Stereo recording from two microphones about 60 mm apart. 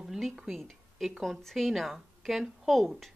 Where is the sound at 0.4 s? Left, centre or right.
Centre.